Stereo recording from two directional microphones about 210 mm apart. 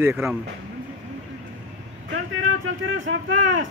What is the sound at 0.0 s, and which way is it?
Speech, 10° right (ahead or behind).